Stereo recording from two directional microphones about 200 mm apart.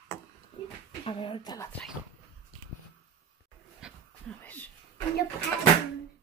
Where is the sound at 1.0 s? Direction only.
25° left (ahead or behind).